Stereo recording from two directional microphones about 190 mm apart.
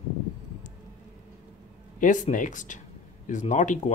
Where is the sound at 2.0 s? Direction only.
40° left (ahead or behind).